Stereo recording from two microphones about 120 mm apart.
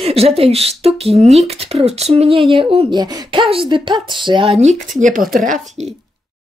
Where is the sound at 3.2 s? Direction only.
45° right (ahead or behind).